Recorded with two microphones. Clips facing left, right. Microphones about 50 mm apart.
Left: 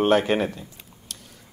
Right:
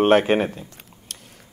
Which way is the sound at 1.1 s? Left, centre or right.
Right.